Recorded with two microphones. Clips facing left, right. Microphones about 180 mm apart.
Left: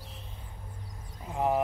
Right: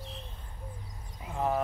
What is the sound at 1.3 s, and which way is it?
Speech, 15° left (ahead or behind).